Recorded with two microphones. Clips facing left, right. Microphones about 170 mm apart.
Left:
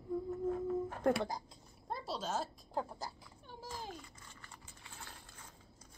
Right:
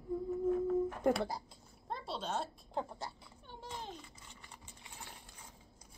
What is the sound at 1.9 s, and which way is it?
Cat, 5° left (ahead or behind).